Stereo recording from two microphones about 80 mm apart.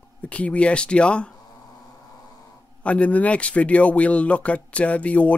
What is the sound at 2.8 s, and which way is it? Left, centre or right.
Speech, centre.